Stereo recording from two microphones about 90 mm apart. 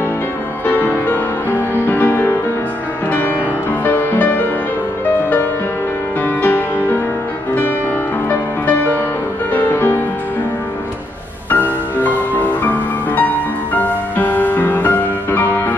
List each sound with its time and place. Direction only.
0.7 s music: 20° left (ahead or behind)
3.8 s music: 20° left (ahead or behind)
6.2 s music: 20° left (ahead or behind)
8.3 s music: 20° left (ahead or behind)
11.5 s music: 20° left (ahead or behind)